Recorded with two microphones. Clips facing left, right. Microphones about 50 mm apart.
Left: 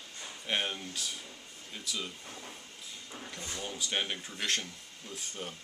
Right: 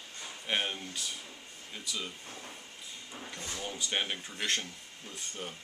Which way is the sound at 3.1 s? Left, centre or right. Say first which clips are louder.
Even; centre.